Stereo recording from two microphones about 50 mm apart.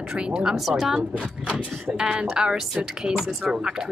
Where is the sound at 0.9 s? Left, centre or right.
Right.